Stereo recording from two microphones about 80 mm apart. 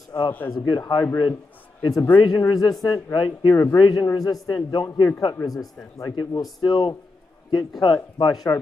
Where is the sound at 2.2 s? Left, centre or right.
Left.